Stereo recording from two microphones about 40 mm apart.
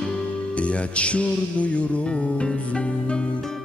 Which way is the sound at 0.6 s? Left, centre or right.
Left.